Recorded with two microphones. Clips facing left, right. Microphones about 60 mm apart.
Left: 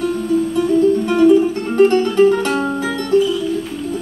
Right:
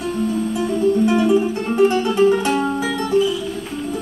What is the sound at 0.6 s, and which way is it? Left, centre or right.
Music, centre.